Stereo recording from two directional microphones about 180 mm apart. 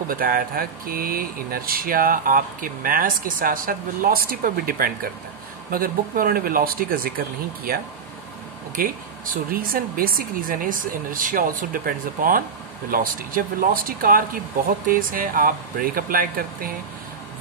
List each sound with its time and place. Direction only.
0.1 s speech: 55° right (ahead or behind)